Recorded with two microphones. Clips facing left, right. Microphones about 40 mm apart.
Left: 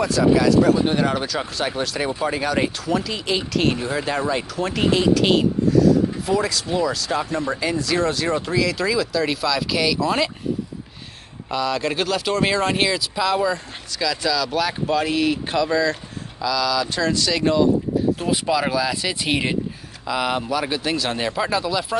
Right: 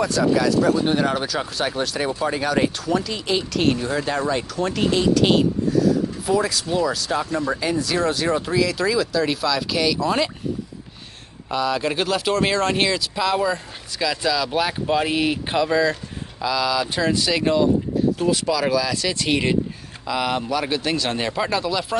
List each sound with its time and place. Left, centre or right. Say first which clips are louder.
0.0 s speech: left 2 dB; centre
11.5 s speech: even; centre
14.0 s speech: even; centre
18.2 s speech: even; centre